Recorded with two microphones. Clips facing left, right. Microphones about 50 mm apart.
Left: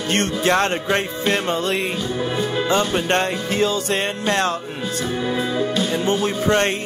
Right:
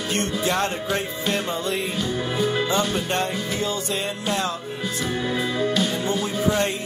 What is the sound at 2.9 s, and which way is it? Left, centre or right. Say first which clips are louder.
Music: left 5 dB; left.